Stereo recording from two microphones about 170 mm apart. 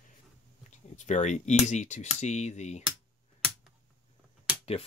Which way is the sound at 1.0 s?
45° left (ahead or behind).